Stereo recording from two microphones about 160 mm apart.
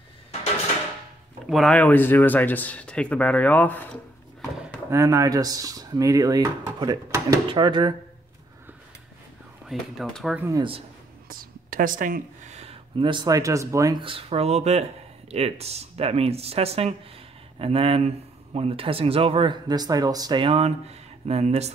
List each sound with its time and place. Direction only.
1.5 s speech: 5° left (ahead or behind)
4.9 s speech: 20° right (ahead or behind)
9.7 s speech: centre (ahead or behind)
11.2 s speech: 60° right (ahead or behind); by 14.0 s 20° right (ahead or behind)
14.0 s speech: 35° right (ahead or behind)